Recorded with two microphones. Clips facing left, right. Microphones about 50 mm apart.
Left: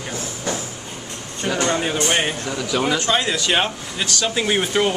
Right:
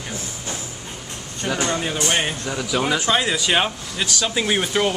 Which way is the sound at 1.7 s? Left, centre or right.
Centre.